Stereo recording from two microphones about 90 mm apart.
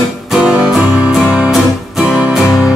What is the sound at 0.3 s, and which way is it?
Music, 10° right (ahead or behind).